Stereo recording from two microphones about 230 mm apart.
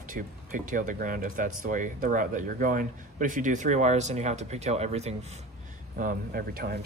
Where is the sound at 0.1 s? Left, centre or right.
Right.